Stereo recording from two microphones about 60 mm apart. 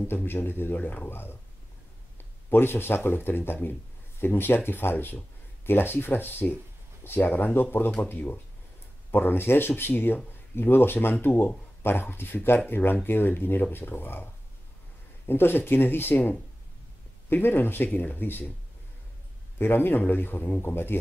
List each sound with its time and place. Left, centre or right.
0.1 s speech: left
2.5 s speech: left
15.2 s speech: left
17.3 s speech: left
19.6 s speech: left